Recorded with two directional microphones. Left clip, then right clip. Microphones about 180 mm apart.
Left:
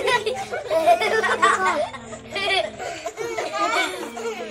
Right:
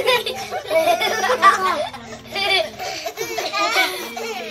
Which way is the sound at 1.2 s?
Centre (ahead or behind).